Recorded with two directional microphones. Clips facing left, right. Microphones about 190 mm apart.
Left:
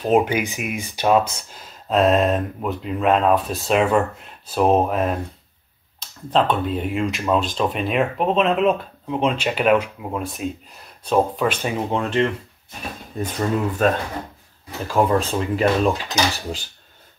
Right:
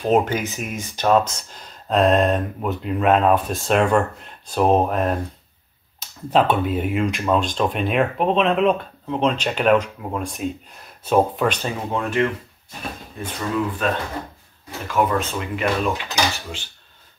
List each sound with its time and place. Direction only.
0.0 s speech: 10° left (ahead or behind)
11.6 s speech: 25° left (ahead or behind)
13.2 s speech: 40° left (ahead or behind)
14.9 s speech: 30° left (ahead or behind)